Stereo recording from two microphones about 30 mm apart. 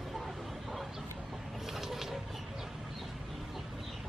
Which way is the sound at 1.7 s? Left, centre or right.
Centre.